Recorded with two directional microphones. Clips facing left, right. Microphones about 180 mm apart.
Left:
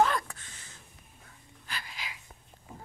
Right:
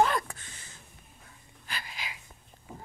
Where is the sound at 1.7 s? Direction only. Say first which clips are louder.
Right 1 dB; 15° right (ahead or behind).